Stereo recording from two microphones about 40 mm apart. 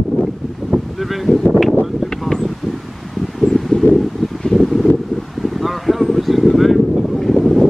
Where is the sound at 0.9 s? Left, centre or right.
Centre.